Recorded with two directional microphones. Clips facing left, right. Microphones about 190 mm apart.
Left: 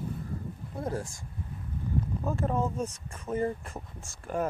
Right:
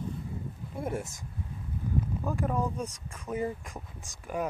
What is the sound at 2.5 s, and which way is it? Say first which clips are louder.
Speech: left 1 dB; 25° left (ahead or behind).